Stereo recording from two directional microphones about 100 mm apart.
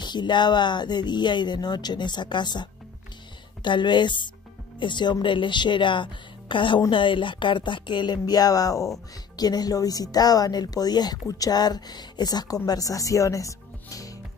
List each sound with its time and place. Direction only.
0.0 s a woman's voice: 45° left (ahead or behind)